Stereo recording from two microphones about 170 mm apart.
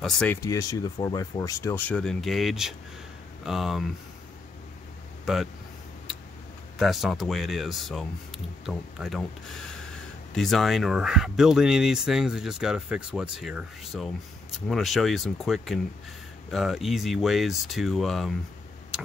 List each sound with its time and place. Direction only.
0.0 s speech: 5° left (ahead or behind)
0.4 s speech: 20° left (ahead or behind); by 3.8 s centre (ahead or behind)
5.2 s speech: centre (ahead or behind)
6.8 s speech: centre (ahead or behind)